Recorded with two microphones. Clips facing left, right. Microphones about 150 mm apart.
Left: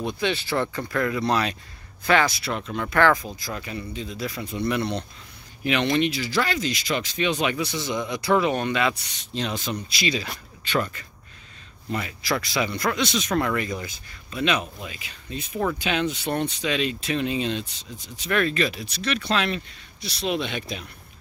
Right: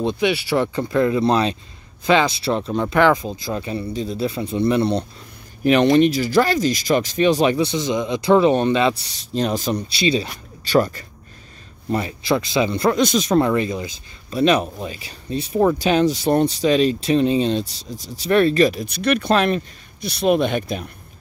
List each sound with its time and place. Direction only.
0.2 s speech: 15° right (ahead or behind); by 5.0 s 30° right (ahead or behind)
5.6 s speech: 40° right (ahead or behind); by 12.9 s 25° right (ahead or behind)
12.9 s speech: 40° right (ahead or behind); by 14.0 s 20° right (ahead or behind)
14.3 s speech: 40° right (ahead or behind)